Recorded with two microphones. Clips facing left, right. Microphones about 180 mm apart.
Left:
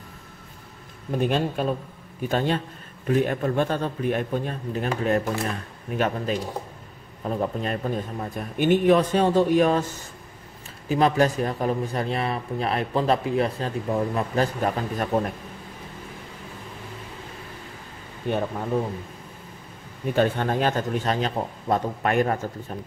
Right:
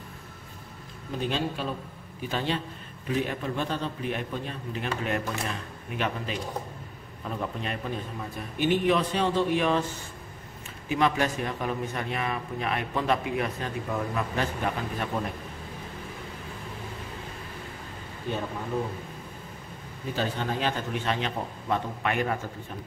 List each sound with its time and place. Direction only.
1.1 s a man's voice: 50° left (ahead or behind)
10.9 s a man's voice: 35° left (ahead or behind)
18.3 s speech: 60° left (ahead or behind)
20.2 s a man's voice: 55° left (ahead or behind)